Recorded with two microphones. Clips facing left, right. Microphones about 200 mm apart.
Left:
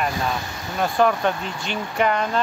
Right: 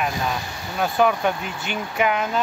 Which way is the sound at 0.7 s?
5° right (ahead or behind).